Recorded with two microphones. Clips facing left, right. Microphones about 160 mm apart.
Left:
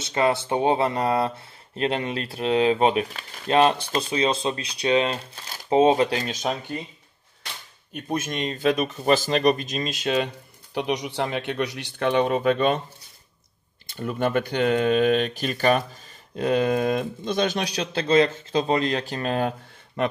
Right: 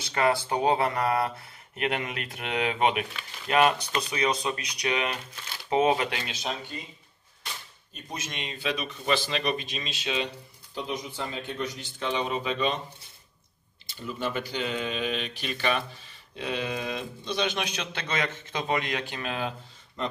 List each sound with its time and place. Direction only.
0.0 s speech: 25° left (ahead or behind)
5.7 s speech: 25° left (ahead or behind); by 6.8 s 45° left (ahead or behind)
7.9 s speech: 55° left (ahead or behind)
10.7 s speech: 70° left (ahead or behind); by 12.8 s 50° left (ahead or behind)
13.8 s speech: 55° left (ahead or behind)
20.0 s speech: 70° left (ahead or behind)